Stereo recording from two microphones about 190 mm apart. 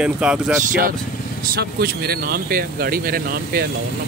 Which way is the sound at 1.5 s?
55° right (ahead or behind).